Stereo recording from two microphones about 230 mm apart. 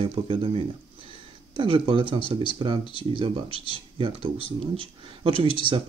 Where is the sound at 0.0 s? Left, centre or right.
Right.